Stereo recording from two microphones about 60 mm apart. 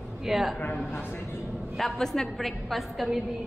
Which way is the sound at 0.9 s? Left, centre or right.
Left.